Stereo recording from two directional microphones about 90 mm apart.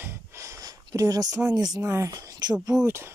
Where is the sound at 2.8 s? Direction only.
30° right (ahead or behind).